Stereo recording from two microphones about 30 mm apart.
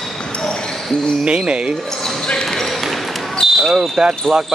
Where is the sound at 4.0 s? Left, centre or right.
Right.